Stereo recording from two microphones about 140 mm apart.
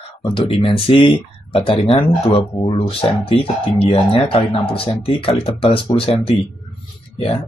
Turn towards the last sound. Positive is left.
turn(degrees=40)  # may be behind; listen again after turning